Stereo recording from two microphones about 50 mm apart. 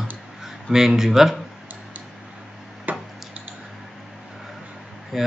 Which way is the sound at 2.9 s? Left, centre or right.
Right.